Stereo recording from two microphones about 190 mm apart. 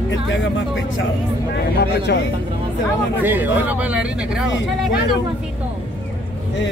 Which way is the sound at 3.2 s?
10° right (ahead or behind).